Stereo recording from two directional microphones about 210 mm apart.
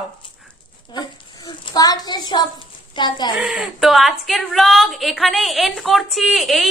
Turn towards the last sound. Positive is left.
turn(degrees=0)  # may be behind; listen again after turning